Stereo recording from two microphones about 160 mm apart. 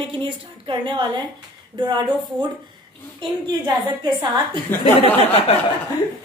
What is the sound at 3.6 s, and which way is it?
Speech, 25° right (ahead or behind).